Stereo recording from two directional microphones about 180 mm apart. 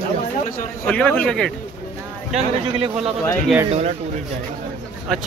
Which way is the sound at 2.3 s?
35° right (ahead or behind).